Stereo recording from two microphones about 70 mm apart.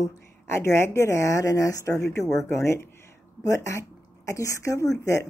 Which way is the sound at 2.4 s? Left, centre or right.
Left.